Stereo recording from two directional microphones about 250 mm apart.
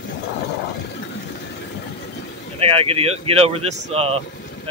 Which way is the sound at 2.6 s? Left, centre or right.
Right.